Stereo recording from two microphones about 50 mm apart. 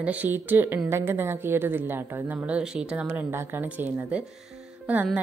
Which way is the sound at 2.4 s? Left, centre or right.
Right.